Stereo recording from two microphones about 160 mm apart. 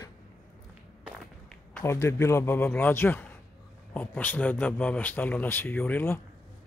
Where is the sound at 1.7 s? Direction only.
15° left (ahead or behind).